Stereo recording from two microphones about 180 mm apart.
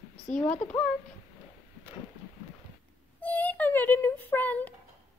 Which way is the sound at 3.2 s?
10° left (ahead or behind).